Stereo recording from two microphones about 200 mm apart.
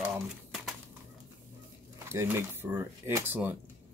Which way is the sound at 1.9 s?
15° right (ahead or behind).